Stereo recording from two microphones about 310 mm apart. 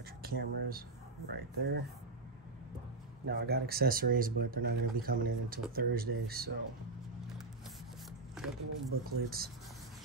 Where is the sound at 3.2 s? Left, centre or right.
Right.